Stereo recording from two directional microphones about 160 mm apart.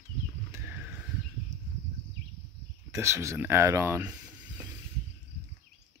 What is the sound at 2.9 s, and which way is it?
Speech, 15° right (ahead or behind).